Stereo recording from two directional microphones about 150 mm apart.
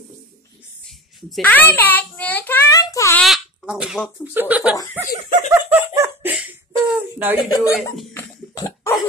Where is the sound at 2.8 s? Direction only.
20° left (ahead or behind).